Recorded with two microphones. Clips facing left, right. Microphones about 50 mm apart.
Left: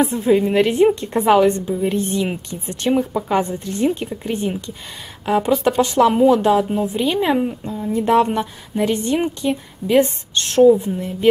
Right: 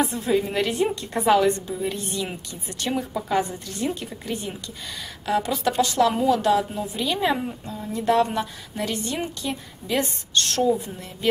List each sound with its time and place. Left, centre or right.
0.0 s a woman's voice: left